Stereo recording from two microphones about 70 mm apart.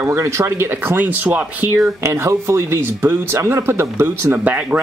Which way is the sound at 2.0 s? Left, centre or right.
Right.